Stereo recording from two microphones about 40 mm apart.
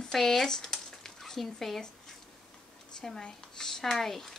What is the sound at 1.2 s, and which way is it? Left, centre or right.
Speech, centre.